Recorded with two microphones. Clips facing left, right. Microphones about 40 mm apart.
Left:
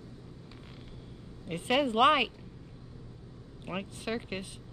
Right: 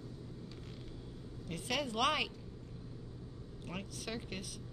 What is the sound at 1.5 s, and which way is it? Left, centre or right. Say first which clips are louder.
Speech: left 9 dB; left.